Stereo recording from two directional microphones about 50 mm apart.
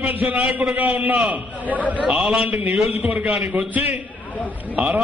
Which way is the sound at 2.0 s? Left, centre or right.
Centre.